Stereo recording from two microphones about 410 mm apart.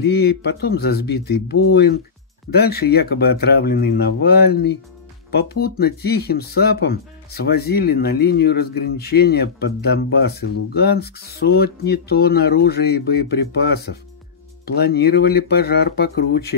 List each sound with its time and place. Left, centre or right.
0.0 s speech: left